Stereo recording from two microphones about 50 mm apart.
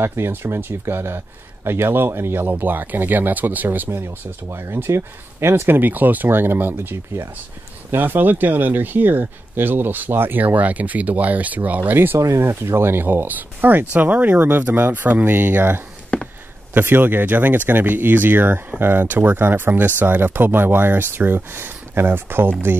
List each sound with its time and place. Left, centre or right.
0.0 s speech: right
4.0 s speech: right
10.4 s speech: right
12.2 s speech: right
16.1 s a sound: left
16.8 s speech: right